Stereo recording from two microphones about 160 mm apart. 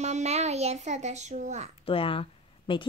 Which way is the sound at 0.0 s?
45° right (ahead or behind).